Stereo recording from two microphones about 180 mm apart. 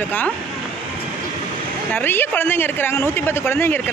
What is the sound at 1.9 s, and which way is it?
A woman's voice, 10° left (ahead or behind).